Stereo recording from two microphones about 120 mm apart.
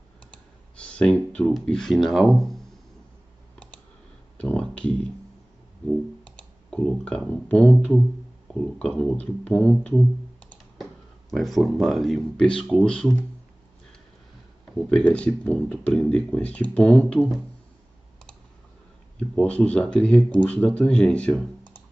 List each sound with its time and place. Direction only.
0.3 s clicking: 10° left (ahead or behind)
1.5 s speech: 5° left (ahead or behind)
4.4 s a sound: 10° left (ahead or behind)
6.2 s clicking: 10° left (ahead or behind)
8.5 s speech: 10° left (ahead or behind)
14.9 s speech: 10° left (ahead or behind)
19.1 s speech: 10° left (ahead or behind)